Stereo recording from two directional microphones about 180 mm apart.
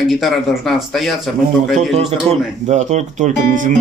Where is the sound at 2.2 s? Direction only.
40° right (ahead or behind).